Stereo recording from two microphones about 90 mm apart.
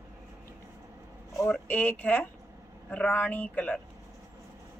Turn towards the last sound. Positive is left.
turn(degrees=20)  # may be behind; listen again after turning